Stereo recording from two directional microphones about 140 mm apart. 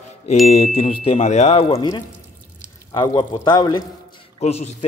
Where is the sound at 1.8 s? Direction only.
30° left (ahead or behind).